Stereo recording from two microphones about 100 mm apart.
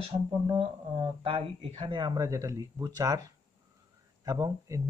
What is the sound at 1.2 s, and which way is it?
Speech, 60° right (ahead or behind).